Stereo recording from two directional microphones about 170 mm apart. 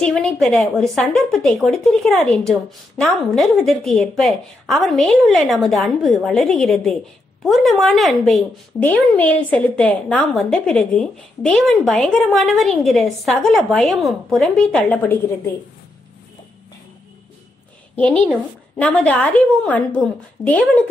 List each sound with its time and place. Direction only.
0.0 s a woman's voice: centre (ahead or behind)
17.9 s a woman's voice: 5° left (ahead or behind)